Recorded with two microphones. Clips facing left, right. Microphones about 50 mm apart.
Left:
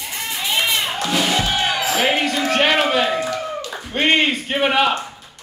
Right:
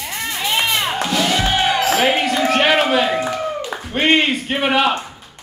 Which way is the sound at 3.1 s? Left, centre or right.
Right.